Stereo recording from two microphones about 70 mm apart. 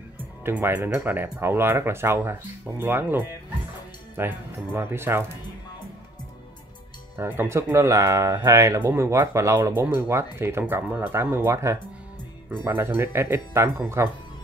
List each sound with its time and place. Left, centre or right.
0.2 s music: right
0.7 s speech: right
7.2 s speech: right
8.7 s speech: right